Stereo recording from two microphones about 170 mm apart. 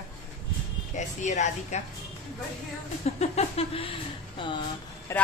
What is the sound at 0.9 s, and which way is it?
Speech, 45° left (ahead or behind).